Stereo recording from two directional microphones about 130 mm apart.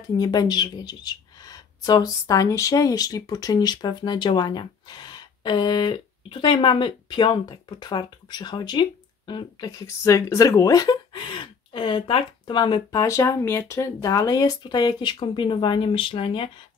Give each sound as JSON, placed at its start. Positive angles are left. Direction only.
{"t": 0.2, "sound": "speech", "side_deg": 30}